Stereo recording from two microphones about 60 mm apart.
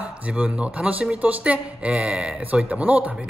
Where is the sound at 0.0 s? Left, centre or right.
Right.